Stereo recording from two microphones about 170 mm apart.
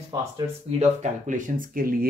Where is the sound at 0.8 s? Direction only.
45° right (ahead or behind).